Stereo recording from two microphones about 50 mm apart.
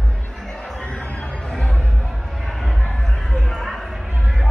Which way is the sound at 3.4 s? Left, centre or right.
Centre.